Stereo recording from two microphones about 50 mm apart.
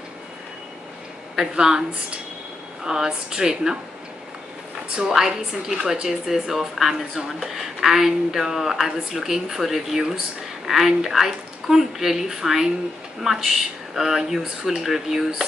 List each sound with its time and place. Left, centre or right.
1.3 s a woman's voice: centre
4.9 s a woman's voice: centre